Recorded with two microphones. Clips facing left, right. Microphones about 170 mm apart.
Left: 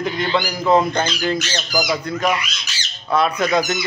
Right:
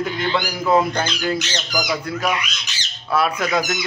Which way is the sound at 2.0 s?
5° right (ahead or behind).